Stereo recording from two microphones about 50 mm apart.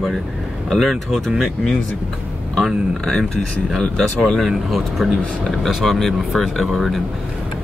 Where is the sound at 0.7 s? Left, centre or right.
Centre.